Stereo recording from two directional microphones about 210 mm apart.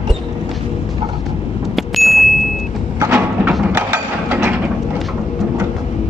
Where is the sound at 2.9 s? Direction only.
10° right (ahead or behind).